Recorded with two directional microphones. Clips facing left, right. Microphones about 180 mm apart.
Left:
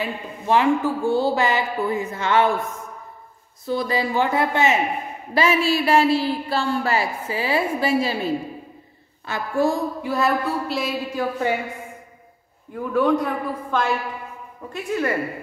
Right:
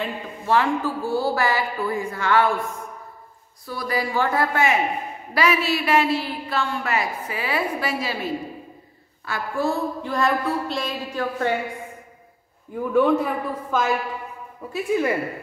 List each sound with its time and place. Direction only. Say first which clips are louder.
0.5 s a woman's voice: left 3 dB; 20° left (ahead or behind)
9.2 s speech: left 4 dB; 20° left (ahead or behind)
12.7 s a man's voice: right 1 dB; 5° right (ahead or behind)